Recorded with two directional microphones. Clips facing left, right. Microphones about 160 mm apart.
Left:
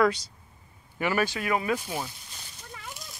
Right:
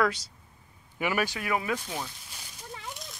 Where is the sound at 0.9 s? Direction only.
15° right (ahead or behind).